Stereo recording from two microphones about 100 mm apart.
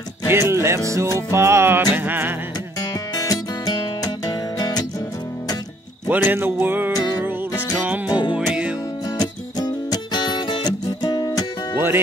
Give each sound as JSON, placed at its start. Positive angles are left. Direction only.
{"t": 0.3, "sound": "music", "side_deg": -25}
{"t": 2.8, "sound": "music", "side_deg": 40}
{"t": 6.0, "sound": "music", "side_deg": -20}
{"t": 9.2, "sound": "music", "side_deg": 40}